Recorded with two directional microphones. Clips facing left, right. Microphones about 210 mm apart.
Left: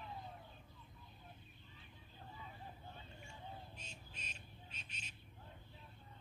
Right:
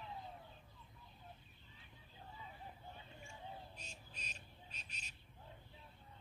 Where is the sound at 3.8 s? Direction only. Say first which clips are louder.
Even; 40° right (ahead or behind).